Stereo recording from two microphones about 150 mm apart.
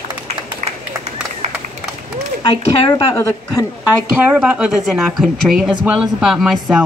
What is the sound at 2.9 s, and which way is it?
Speech, 25° left (ahead or behind).